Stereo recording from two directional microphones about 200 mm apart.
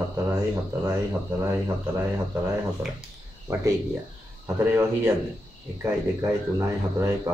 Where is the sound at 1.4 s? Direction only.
10° right (ahead or behind).